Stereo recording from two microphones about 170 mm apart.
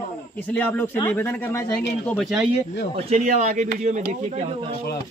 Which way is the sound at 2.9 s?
40° right (ahead or behind).